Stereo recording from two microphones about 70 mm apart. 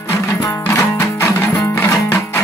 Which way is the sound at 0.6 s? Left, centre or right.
Left.